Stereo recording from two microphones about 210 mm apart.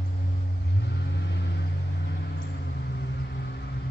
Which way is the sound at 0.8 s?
55° left (ahead or behind).